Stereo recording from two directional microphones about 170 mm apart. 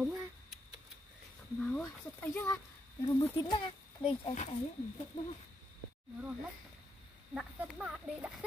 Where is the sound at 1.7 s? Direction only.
10° left (ahead or behind).